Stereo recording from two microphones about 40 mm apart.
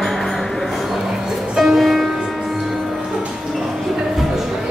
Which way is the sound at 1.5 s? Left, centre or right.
Centre.